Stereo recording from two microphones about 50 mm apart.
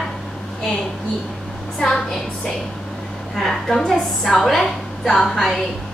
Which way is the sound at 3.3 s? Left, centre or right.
Centre.